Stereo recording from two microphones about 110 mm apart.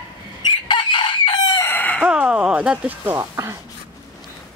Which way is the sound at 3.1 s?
25° right (ahead or behind).